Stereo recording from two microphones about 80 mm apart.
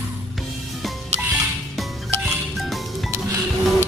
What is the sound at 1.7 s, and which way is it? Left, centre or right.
Music, centre.